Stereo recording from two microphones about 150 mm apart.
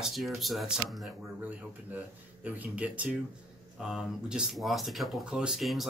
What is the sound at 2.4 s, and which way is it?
Speech, 10° right (ahead or behind).